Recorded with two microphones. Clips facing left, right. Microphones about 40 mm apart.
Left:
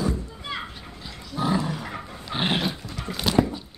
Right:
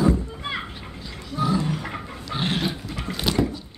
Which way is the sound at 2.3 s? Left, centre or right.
Left.